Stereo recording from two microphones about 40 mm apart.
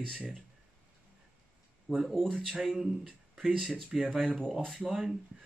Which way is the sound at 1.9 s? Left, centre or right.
Centre.